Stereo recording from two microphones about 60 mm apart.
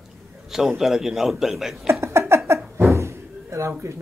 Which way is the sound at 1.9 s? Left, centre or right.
Right.